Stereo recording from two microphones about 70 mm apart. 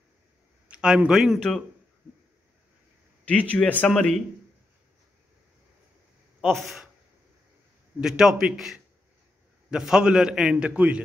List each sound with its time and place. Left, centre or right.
0.7 s a man's voice: centre
3.3 s a man's voice: centre
6.4 s speech: centre
8.0 s a man's voice: centre